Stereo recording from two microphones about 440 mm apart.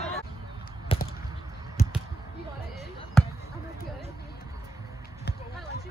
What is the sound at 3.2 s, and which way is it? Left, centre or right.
Basketball bounce, centre.